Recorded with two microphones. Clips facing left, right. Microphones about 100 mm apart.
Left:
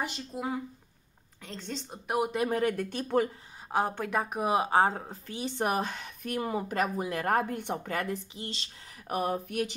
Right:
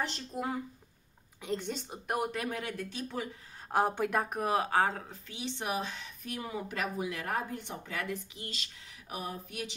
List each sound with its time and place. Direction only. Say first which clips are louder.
0.0 s speech: left 1 dB; 5° left (ahead or behind)
1.4 s a woman's voice: right 4 dB; 10° right (ahead or behind)
2.5 s speech: left 9 dB; 50° left (ahead or behind)
3.9 s speech: even; 5° right (ahead or behind)
4.5 s speech: left 5 dB; 20° left (ahead or behind); by 8.0 s 55° left (ahead or behind)
8.0 s speech: left 4 dB; 30° left (ahead or behind)
9.1 s speech: left 9 dB; 55° left (ahead or behind)